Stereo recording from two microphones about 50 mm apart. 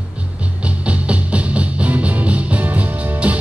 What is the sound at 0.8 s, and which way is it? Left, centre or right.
Music, right.